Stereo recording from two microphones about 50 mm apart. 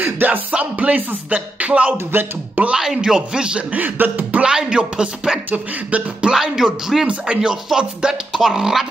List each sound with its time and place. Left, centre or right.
0.0 s music: right
0.5 s speech: right
2.6 s speech: right
3.2 s speech: centre
3.7 s a sound: right
4.4 s speech: centre
5.5 s a sound: right
6.2 s speech: centre